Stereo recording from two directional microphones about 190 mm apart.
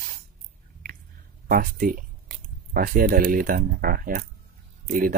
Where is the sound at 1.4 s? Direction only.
50° right (ahead or behind).